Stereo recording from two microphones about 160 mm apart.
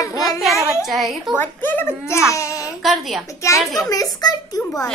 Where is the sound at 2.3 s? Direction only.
20° left (ahead or behind).